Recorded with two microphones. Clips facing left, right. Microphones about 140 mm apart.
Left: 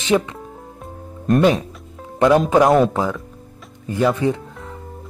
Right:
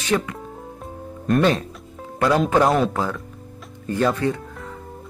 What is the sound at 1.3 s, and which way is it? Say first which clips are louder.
Speech: left 3 dB; 15° left (ahead or behind).